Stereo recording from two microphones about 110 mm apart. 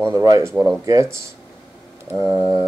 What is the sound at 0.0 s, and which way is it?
Speech, 35° right (ahead or behind).